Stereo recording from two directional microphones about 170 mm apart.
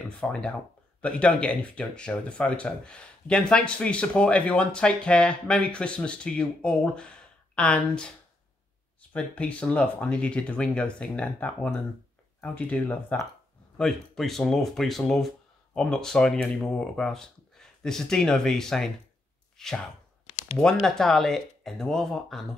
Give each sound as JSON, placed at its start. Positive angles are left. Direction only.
{"t": 0.2, "sound": "speech", "side_deg": 5}
{"t": 9.1, "sound": "speech", "side_deg": 5}
{"t": 20.2, "sound": "a sound", "side_deg": 45}
{"t": 20.5, "sound": "speech", "side_deg": 5}